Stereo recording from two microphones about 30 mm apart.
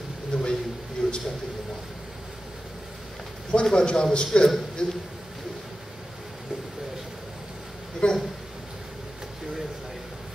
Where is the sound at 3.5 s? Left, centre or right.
Left.